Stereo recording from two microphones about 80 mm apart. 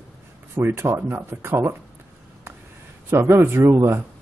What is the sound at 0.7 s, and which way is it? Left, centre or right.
Speech, right.